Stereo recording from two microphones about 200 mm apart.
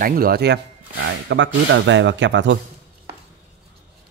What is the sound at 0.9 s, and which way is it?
Speech, 65° right (ahead or behind).